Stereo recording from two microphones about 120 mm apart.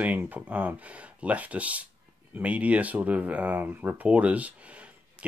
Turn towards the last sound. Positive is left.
turn(degrees=-10)  # may be behind; listen again after turning